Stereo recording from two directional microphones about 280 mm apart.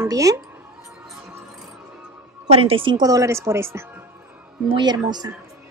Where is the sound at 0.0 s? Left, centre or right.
Centre.